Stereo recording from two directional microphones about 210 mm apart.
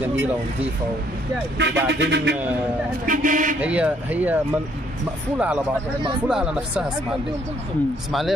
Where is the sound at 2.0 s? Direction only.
55° right (ahead or behind).